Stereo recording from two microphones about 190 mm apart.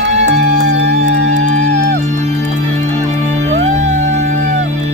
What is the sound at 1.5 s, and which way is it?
Music, 40° right (ahead or behind).